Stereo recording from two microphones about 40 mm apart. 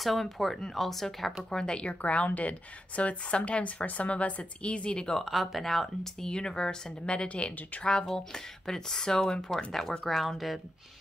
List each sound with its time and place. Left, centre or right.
0.0 s speech: centre
1.5 s speech: left
2.0 s a woman's voice: left
5.2 s speech: centre
6.2 s speech: centre
8.3 s speech: centre